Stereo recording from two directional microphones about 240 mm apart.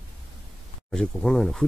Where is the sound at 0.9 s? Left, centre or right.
Centre.